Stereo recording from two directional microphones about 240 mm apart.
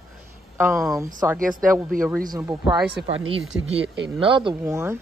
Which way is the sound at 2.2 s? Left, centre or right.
Centre.